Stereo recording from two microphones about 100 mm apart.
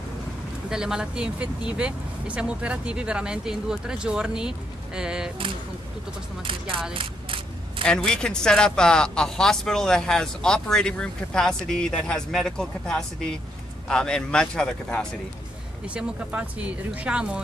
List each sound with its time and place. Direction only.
0.7 s speech: 5° right (ahead or behind)
6.9 s a sound: 60° right (ahead or behind)
7.8 s speech: 5° left (ahead or behind)
15.9 s speech: 15° right (ahead or behind)